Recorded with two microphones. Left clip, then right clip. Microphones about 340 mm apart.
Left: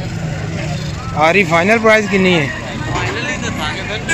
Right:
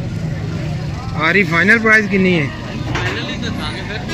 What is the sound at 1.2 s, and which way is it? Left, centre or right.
Speech, centre.